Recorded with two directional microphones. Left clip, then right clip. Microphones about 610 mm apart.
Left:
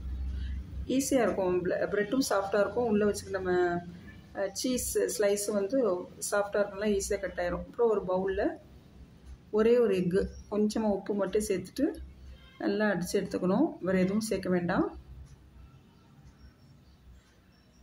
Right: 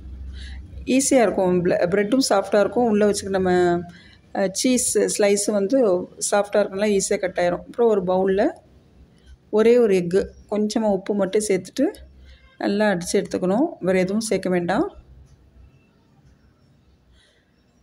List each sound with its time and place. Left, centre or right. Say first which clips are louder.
0.8 s speech: right 10 dB; centre